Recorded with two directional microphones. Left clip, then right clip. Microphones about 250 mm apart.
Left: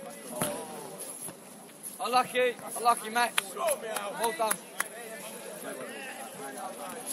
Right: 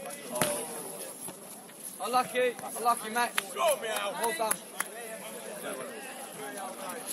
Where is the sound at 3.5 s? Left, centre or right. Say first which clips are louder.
Right 3 dB; right.